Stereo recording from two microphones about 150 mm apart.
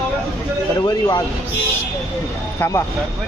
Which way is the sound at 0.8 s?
25° left (ahead or behind).